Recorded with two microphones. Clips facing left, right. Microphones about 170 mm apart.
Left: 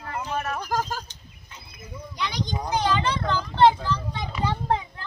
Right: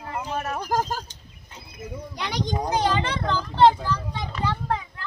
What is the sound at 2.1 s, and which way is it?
Speech, 60° right (ahead or behind).